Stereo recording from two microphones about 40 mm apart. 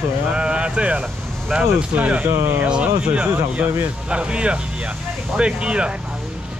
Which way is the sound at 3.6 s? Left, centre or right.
Right.